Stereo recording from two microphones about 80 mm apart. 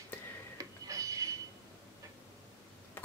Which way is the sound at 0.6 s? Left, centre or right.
Right.